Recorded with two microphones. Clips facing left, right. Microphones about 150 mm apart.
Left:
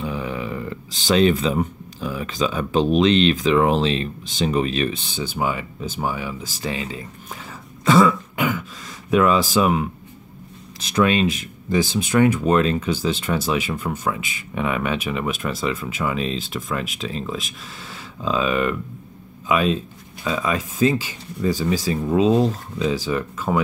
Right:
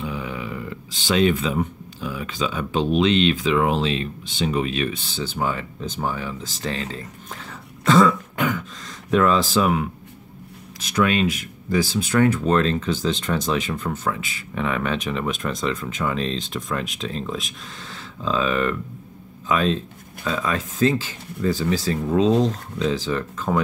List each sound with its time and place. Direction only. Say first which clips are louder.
0.0 s speech: left 3 dB; 40° left (ahead or behind)
4.9 s speech: left 1 dB; 15° left (ahead or behind)